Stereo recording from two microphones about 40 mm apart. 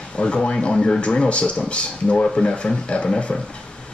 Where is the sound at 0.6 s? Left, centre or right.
Left.